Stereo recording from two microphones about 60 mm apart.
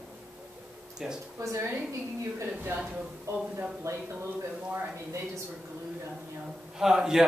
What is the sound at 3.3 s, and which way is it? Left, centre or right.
Speech, right.